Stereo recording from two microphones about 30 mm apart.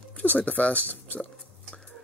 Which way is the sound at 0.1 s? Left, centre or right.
Left.